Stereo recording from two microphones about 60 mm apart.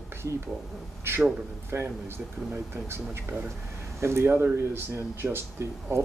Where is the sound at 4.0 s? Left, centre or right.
Right.